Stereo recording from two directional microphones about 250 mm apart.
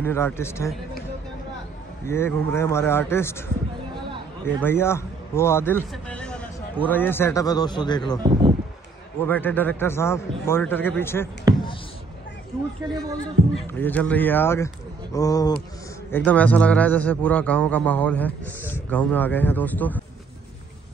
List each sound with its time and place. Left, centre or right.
0.0 s a man's voice: centre
2.0 s a man's voice: centre
4.6 s a man's voice: centre
8.2 s speech: centre
9.2 s a man's voice: centre
11.5 s a sound: centre
13.5 s a man's voice: centre